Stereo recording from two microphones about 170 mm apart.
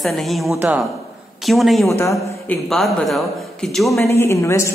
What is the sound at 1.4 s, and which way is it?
Speech, centre (ahead or behind).